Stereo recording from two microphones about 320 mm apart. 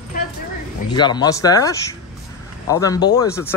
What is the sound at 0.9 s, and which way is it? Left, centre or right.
Speech, centre.